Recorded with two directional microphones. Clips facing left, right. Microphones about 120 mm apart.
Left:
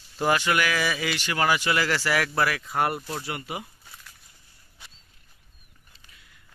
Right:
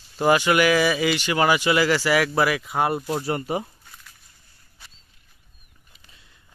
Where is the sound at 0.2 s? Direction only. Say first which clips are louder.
Right 5 dB; 10° right (ahead or behind).